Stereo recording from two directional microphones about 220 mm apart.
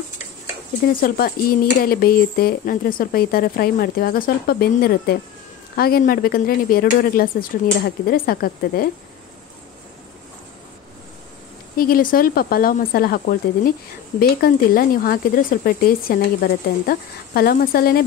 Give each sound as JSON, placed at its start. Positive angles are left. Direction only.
{"t": 1.0, "sound": "speech", "side_deg": 40}
{"t": 11.7, "sound": "speech", "side_deg": 40}